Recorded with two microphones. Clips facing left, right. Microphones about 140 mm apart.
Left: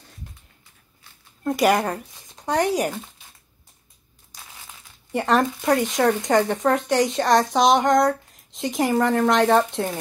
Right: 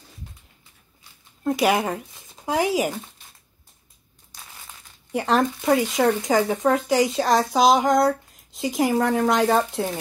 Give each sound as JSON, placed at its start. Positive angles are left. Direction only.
{"t": 1.4, "sound": "speech", "side_deg": 0}
{"t": 5.1, "sound": "speech", "side_deg": 0}